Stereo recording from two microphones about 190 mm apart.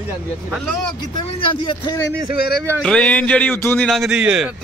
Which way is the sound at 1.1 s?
25° left (ahead or behind).